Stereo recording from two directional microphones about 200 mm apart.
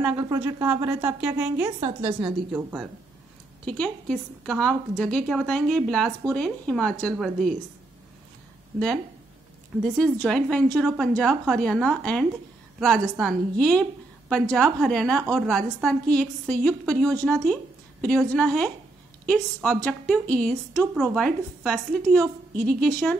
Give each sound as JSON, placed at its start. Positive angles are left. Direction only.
{"t": 0.0, "sound": "a woman's voice", "side_deg": -15}
{"t": 1.8, "sound": "speech", "side_deg": -30}
{"t": 2.2, "sound": "a woman's voice", "side_deg": -5}
{"t": 3.6, "sound": "a woman's voice", "side_deg": 5}
{"t": 8.7, "sound": "a woman's voice", "side_deg": 5}
{"t": 10.2, "sound": "a woman's voice", "side_deg": 5}